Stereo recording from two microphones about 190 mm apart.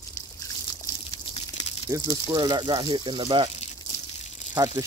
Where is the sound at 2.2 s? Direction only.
20° right (ahead or behind).